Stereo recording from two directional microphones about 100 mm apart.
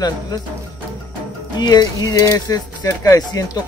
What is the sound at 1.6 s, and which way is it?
Speech, 40° left (ahead or behind).